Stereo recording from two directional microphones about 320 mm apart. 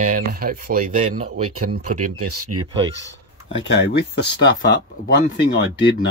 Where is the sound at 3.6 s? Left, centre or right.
Left.